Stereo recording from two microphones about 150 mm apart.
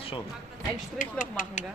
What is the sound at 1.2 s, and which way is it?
Speech, 60° left (ahead or behind).